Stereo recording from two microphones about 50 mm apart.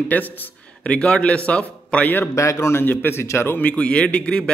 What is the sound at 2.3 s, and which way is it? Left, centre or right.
Speech, left.